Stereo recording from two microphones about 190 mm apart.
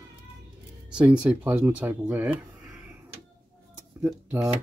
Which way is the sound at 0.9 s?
5° right (ahead or behind).